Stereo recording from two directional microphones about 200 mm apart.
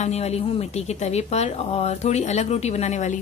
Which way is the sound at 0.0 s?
30° left (ahead or behind).